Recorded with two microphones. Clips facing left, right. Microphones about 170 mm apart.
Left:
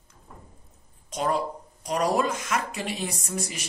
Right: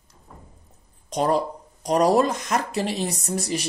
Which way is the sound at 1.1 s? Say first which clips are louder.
Right 5 dB; 35° right (ahead or behind).